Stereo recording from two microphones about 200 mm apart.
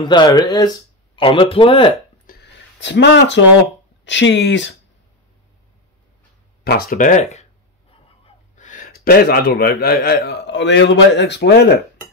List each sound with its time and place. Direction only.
0.0 s speech: 20° left (ahead or behind)
2.2 s a sound: 60° left (ahead or behind)
4.0 s speech: 65° left (ahead or behind)
6.6 s speech: 50° left (ahead or behind)
8.5 s a man's voice: 40° left (ahead or behind)